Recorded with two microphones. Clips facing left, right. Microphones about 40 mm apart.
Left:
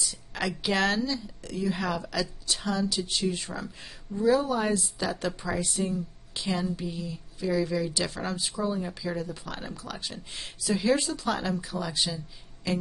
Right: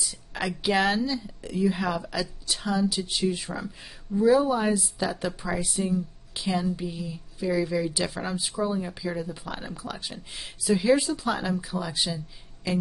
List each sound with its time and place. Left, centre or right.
0.0 s a woman's voice: centre